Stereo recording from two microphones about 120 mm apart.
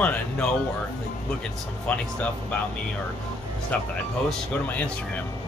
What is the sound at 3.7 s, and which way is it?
Speech, 10° left (ahead or behind).